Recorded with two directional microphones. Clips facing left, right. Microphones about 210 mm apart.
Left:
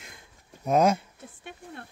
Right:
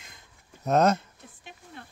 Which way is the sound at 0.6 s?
10° left (ahead or behind).